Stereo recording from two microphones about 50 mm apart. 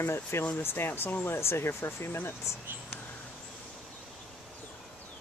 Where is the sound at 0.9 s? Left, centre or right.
Left.